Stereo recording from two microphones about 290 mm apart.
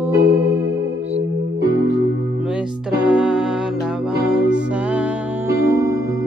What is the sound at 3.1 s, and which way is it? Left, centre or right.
Music, centre.